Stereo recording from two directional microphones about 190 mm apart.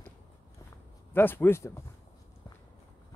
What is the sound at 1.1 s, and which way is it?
Speech, 10° left (ahead or behind).